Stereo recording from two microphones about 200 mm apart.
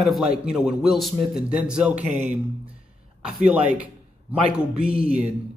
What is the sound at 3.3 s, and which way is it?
A man's voice, 5° right (ahead or behind).